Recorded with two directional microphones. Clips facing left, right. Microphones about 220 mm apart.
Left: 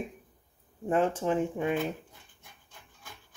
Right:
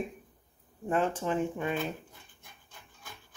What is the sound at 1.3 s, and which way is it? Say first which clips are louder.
Speech: left 3 dB; 15° left (ahead or behind).